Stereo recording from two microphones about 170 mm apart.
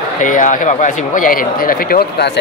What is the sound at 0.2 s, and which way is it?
Speech, 50° left (ahead or behind).